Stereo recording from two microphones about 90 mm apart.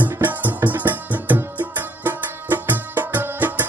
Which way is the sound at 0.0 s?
20° right (ahead or behind).